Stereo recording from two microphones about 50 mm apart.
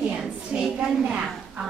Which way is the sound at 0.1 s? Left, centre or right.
Centre.